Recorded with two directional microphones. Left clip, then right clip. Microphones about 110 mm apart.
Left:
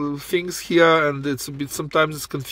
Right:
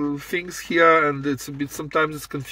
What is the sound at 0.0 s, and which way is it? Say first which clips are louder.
Speech: left 2 dB; 25° left (ahead or behind).